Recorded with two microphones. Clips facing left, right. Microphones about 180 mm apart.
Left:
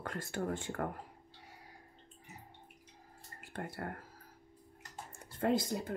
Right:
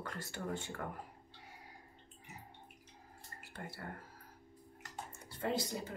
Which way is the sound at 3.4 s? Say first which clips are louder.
Left 6 dB; 50° left (ahead or behind).